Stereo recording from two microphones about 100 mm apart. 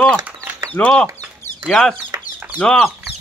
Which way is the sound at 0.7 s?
10° left (ahead or behind).